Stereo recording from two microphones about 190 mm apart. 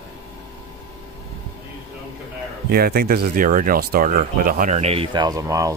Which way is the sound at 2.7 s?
50° right (ahead or behind).